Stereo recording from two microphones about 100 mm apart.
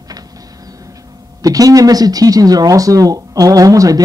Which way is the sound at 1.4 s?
35° right (ahead or behind).